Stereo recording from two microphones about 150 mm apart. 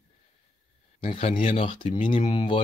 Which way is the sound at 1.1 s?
40° left (ahead or behind).